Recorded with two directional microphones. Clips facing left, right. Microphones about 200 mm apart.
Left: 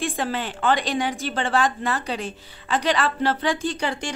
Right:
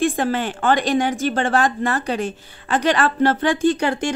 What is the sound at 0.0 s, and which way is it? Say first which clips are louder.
A woman's voice: right 6 dB; 45° right (ahead or behind).